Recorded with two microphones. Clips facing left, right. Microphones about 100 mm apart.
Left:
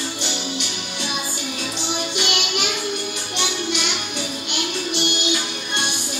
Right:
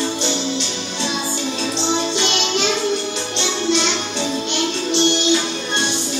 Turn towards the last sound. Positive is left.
turn(degrees=-25)  # may be behind; listen again after turning